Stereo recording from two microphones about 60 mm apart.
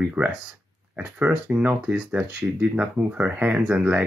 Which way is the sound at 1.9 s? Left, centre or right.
Centre.